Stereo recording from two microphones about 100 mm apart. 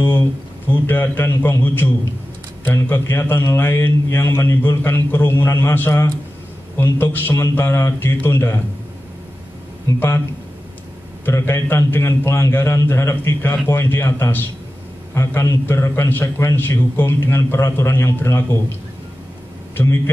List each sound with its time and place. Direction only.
0.0 s a man's voice: 20° left (ahead or behind)
9.9 s a man's voice: 25° left (ahead or behind)
11.2 s a man's voice: 25° left (ahead or behind)